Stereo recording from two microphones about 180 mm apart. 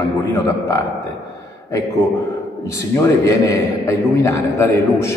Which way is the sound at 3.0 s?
15° left (ahead or behind).